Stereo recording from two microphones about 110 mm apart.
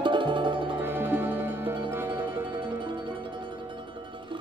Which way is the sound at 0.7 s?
20° right (ahead or behind).